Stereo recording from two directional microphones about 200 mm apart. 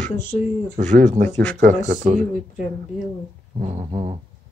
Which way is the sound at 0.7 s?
40° right (ahead or behind).